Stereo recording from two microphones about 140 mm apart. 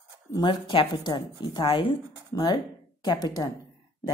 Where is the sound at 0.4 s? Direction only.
35° left (ahead or behind).